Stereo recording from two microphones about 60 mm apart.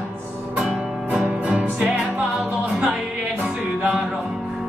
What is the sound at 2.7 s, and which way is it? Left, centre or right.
Music, centre.